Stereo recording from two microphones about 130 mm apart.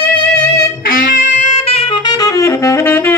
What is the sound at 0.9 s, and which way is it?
Saxophone, 90° left.